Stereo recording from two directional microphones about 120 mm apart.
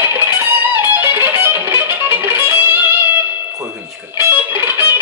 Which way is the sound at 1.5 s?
15° right (ahead or behind).